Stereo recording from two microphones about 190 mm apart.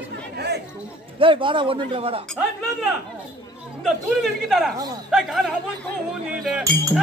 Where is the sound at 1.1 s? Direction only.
25° right (ahead or behind).